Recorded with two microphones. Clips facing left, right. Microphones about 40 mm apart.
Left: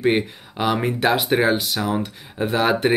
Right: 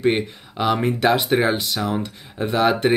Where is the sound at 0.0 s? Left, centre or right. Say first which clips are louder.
Even; centre.